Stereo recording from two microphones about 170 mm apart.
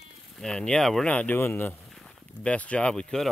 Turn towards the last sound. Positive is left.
turn(degrees=5)  # may be behind; listen again after turning